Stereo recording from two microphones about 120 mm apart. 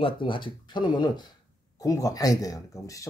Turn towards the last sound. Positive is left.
turn(degrees=30)  # may be behind; listen again after turning